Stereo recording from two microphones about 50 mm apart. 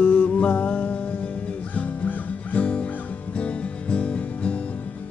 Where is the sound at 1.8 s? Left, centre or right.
Left.